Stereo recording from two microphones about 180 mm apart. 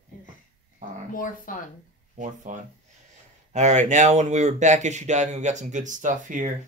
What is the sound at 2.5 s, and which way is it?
Speech, 45° right (ahead or behind).